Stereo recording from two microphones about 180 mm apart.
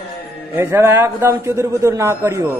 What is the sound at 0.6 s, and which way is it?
A man's voice, 15° right (ahead or behind).